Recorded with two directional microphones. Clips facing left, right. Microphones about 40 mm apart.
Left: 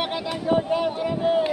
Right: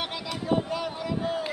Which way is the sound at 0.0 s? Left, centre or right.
Left.